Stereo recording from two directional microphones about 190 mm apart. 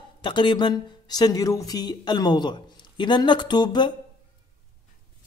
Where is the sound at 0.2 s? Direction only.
25° left (ahead or behind).